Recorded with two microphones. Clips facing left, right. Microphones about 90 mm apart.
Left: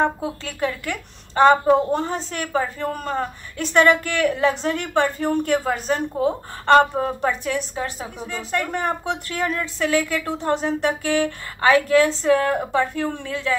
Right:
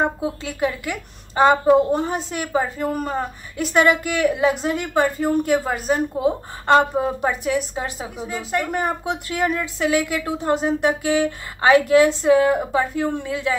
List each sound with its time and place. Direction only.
0.0 s a woman's voice: 15° right (ahead or behind)